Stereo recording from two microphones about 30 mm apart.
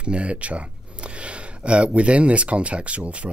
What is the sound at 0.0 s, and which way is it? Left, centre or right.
Speech, right.